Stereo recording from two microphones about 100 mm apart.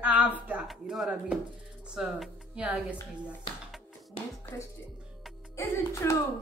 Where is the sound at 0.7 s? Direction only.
Centre (ahead or behind).